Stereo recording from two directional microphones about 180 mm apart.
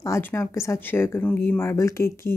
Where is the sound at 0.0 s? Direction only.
15° left (ahead or behind).